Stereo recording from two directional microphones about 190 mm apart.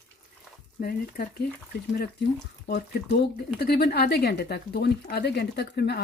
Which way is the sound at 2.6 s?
50° left (ahead or behind).